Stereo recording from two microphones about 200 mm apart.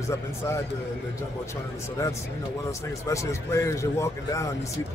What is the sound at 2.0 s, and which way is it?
A man's voice, 15° left (ahead or behind).